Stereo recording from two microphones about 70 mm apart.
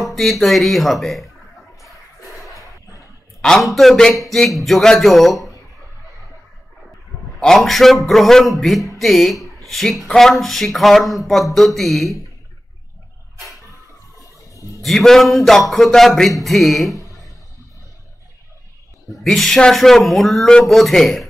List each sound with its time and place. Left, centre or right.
0.0 s speech: centre
2.4 s a sound: left
3.3 s speech: centre
7.3 s speech: centre
14.8 s speech: centre
19.2 s speech: centre